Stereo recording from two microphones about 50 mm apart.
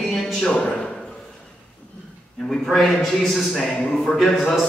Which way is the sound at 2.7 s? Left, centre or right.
Centre.